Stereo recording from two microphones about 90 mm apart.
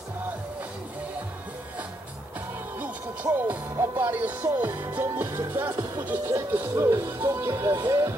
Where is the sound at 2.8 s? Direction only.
20° right (ahead or behind).